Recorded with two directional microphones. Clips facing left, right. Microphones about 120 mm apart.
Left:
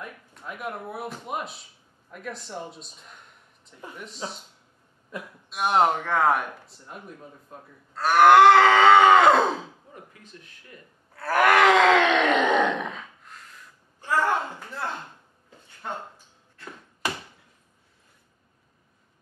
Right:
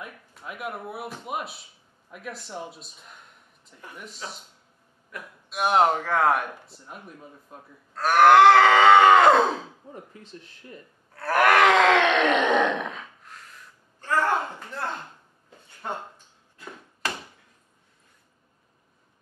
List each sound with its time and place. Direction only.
0.0 s speech: 5° right (ahead or behind)
5.1 s speech: 25° left (ahead or behind)
5.5 s speech: centre (ahead or behind)
9.9 s speech: 30° right (ahead or behind)
11.1 s groan: centre (ahead or behind)